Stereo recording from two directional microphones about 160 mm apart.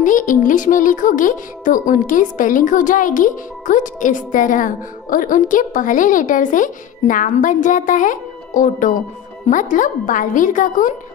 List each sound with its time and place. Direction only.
0.0 s music: 55° left (ahead or behind)